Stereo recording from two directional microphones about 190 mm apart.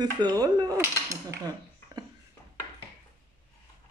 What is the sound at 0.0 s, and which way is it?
Speech, 20° right (ahead or behind).